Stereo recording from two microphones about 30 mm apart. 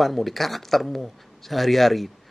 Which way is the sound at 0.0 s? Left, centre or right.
Centre.